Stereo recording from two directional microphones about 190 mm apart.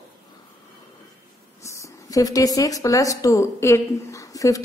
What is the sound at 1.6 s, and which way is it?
Speech, 15° left (ahead or behind).